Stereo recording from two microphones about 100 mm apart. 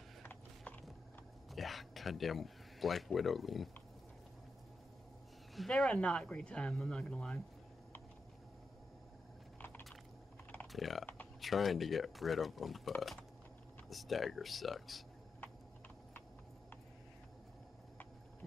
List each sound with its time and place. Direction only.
0.2 s mechanisms: 20° left (ahead or behind)
1.5 s speech: centre (ahead or behind)
5.6 s speech: 5° left (ahead or behind)
9.6 s squish: 20° left (ahead or behind)
10.7 s speech: centre (ahead or behind)